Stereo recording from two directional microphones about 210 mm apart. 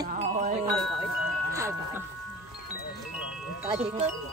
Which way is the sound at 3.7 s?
30° right (ahead or behind).